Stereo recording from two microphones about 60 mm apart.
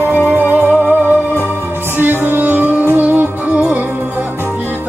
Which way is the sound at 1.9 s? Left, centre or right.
Right.